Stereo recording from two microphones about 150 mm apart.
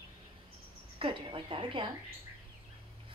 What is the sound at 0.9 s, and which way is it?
Speech, 35° right (ahead or behind).